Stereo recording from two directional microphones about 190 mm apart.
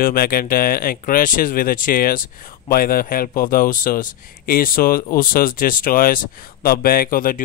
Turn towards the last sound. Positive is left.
turn(degrees=50)  # may be behind; listen again after turning